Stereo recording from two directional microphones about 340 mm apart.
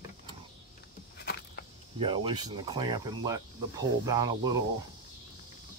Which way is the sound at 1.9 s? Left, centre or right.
Centre.